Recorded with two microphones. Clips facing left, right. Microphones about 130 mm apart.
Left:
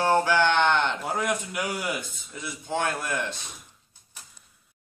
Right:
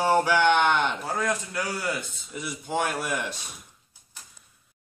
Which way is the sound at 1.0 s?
15° left (ahead or behind).